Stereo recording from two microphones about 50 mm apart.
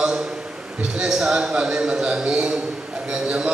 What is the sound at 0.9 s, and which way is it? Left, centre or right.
A man's voice, centre.